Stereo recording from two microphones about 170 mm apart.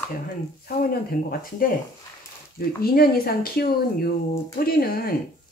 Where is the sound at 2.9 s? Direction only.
60° left (ahead or behind).